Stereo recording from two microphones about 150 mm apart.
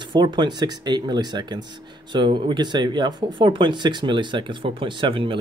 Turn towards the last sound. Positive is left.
turn(degrees=-35)  # may be behind; listen again after turning